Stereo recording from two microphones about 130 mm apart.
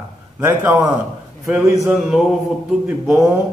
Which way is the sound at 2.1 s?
5° right (ahead or behind).